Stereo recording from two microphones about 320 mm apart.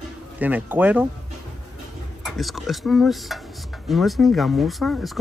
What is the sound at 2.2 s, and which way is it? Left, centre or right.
Speech, centre.